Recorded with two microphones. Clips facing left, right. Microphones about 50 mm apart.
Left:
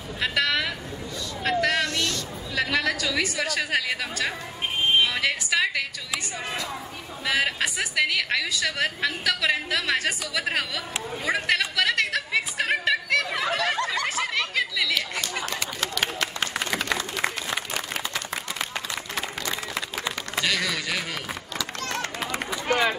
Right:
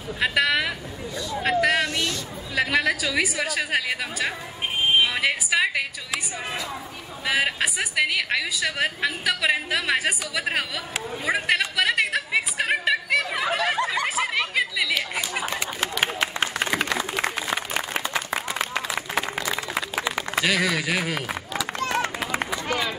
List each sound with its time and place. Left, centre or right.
0.2 s a sound: centre
4.8 s a woman's voice: centre
11.1 s chatter: centre
17.1 s applause: centre
19.1 s a sound: centre
20.1 s run: centre